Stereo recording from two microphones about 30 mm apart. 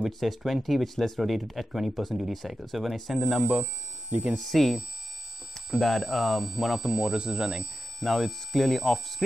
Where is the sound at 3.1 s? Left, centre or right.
Right.